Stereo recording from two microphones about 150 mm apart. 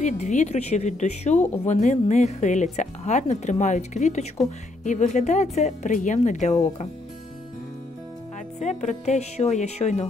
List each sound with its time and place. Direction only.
0.0 s speech: 50° left (ahead or behind)
8.5 s speech: 50° left (ahead or behind)